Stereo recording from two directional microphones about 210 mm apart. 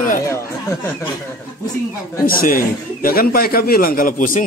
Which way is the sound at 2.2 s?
40° left (ahead or behind).